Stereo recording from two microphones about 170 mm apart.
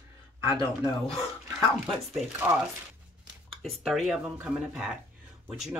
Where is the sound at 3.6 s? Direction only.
Centre (ahead or behind).